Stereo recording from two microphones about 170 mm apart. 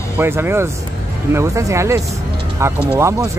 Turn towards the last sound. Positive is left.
turn(degrees=-15)  # may be behind; listen again after turning